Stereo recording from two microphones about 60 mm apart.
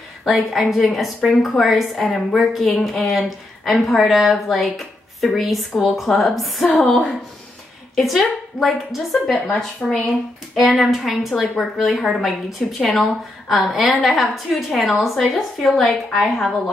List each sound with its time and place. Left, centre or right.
0.2 s a woman's voice: centre